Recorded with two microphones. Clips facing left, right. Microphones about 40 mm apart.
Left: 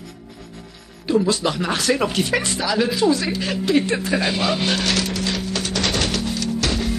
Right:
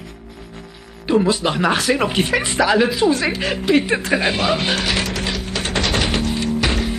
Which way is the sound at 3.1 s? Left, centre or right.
Right.